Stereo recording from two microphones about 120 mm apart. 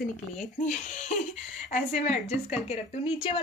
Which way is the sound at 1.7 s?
85° left.